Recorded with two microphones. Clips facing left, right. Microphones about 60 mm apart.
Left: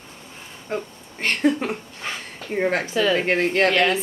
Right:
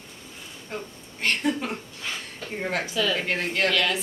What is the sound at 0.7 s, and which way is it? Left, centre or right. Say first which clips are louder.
A woman's voice: left 7 dB; left.